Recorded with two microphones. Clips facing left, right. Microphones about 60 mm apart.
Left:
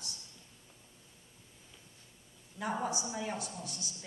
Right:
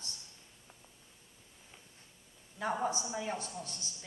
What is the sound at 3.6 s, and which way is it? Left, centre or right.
Speech, centre.